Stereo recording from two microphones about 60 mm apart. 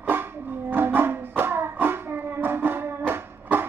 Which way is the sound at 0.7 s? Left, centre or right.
Right.